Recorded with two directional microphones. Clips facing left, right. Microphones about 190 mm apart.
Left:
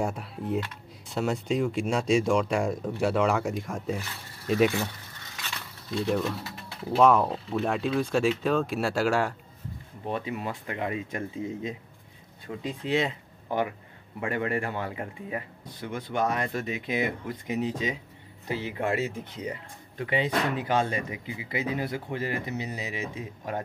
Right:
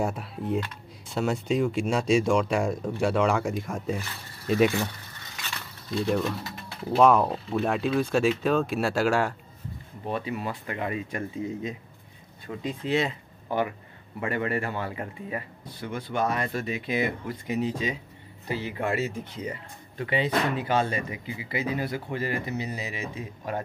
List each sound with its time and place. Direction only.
0.0 s speech: centre (ahead or behind)
7.0 s speech: 15° right (ahead or behind)
10.0 s speech: 20° left (ahead or behind)